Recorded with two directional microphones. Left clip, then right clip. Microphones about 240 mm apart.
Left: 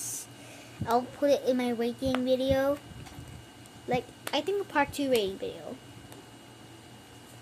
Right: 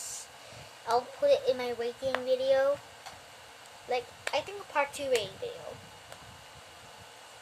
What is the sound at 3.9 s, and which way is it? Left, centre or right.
Speech, centre.